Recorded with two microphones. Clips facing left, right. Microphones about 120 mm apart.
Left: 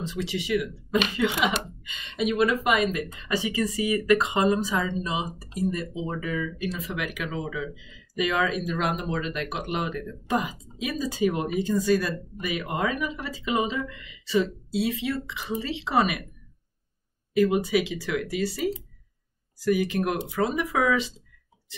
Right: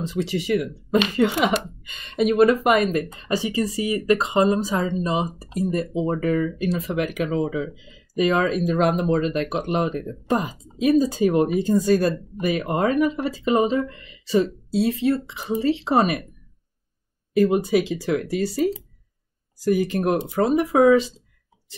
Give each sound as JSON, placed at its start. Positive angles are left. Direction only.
{"t": 0.1, "sound": "speech", "side_deg": -45}
{"t": 17.5, "sound": "speech", "side_deg": -40}